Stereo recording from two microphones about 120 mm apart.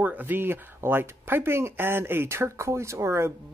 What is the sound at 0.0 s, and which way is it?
Speech, 15° right (ahead or behind).